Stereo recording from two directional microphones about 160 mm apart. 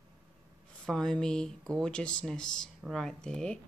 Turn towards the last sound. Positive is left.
turn(degrees=5)  # may be behind; listen again after turning